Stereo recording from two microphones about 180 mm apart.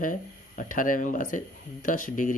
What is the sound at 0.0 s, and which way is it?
Speech, 50° left (ahead or behind).